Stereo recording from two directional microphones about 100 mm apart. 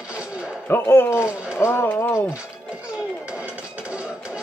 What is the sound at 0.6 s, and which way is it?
Speech, 20° left (ahead or behind).